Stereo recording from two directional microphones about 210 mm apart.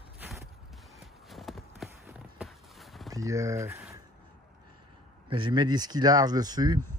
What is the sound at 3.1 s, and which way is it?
Speech, 15° right (ahead or behind).